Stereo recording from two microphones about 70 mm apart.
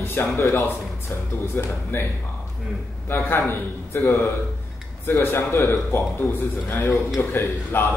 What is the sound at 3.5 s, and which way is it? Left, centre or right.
A man's voice, left.